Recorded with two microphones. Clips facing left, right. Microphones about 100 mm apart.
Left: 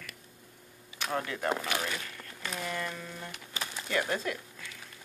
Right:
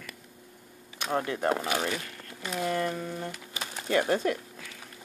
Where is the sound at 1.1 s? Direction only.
30° right (ahead or behind).